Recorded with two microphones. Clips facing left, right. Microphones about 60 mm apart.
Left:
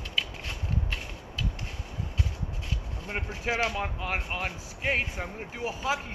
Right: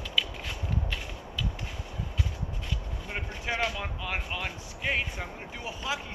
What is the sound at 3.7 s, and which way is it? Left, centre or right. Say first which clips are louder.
Speech: left 3 dB; left.